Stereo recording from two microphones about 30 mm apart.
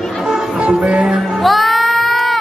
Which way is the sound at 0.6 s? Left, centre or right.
Right.